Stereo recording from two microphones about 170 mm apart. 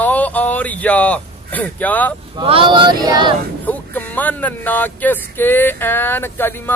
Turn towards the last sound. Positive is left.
turn(degrees=10)  # may be behind; listen again after turning